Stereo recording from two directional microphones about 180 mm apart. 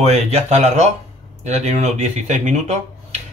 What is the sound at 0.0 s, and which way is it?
Speech, 35° right (ahead or behind).